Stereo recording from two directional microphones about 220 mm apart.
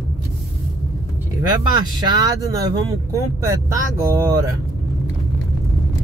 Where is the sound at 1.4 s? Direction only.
20° right (ahead or behind).